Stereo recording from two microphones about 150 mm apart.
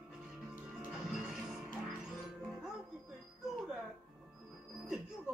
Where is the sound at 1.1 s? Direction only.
5° right (ahead or behind).